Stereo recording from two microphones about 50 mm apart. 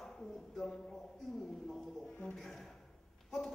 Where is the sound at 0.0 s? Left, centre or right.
Centre.